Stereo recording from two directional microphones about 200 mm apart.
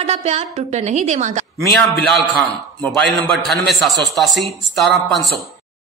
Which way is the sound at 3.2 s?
5° left (ahead or behind).